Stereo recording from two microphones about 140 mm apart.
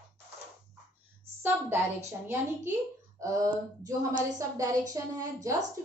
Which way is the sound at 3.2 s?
25° right (ahead or behind).